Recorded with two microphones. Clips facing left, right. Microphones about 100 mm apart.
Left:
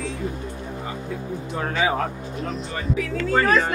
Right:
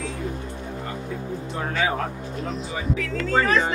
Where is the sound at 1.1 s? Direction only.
Centre (ahead or behind).